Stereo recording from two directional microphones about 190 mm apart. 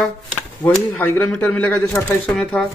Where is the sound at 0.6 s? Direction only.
20° left (ahead or behind).